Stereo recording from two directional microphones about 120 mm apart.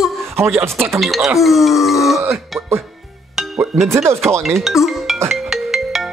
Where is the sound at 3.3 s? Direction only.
Centre (ahead or behind).